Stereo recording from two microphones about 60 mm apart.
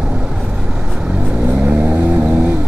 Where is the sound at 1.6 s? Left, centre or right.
Right.